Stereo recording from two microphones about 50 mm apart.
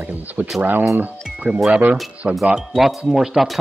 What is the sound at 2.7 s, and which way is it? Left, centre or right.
Speech, centre.